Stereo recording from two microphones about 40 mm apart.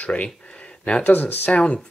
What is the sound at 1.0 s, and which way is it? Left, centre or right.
Speech, left.